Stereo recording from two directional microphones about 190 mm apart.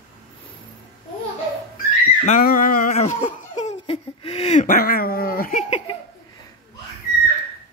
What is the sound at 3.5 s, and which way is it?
Dog, 35° left (ahead or behind).